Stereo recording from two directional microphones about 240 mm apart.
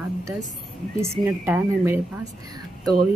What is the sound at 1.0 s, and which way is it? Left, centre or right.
A woman's voice, centre.